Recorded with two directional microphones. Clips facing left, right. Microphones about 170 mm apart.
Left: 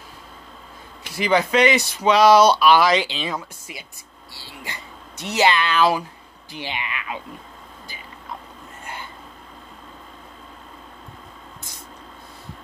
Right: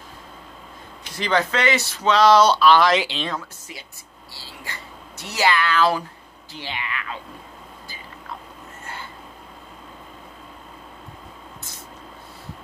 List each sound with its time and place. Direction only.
1.1 s speech: 10° left (ahead or behind)
2.9 s speech: centre (ahead or behind)
3.3 s speech: 15° left (ahead or behind)